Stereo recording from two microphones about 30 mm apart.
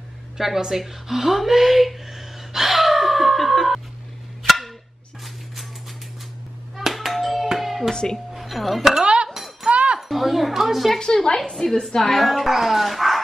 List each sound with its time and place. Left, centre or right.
0.7 s a sound: centre
6.8 s hands: centre
7.5 s music: centre
7.9 s speech: left
8.3 s speech: centre
9.0 s a sound: right
9.3 s chink: centre
9.7 s a sound: right
10.0 s speech: centre
11.1 s a woman's voice: left
12.0 s a woman's voice: centre
12.3 s speech: centre